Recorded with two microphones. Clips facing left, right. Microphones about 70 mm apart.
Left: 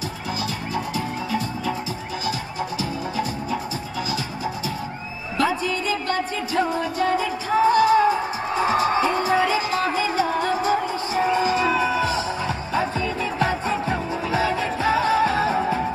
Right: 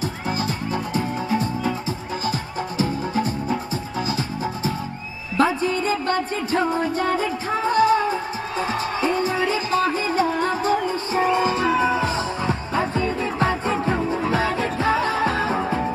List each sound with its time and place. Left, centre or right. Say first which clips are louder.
0.9 s music: right 3 dB; right
2.8 s music: right 7 dB; right
5.4 s music: right 3 dB; right
9.9 s music: right 1 dB; right